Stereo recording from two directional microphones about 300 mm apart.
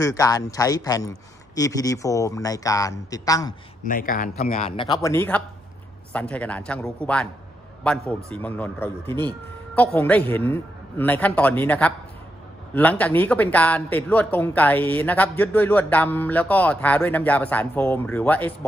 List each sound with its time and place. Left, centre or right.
0.0 s a man's voice: centre
3.8 s a man's voice: left; by 7.2 s centre
8.3 s a man's voice: centre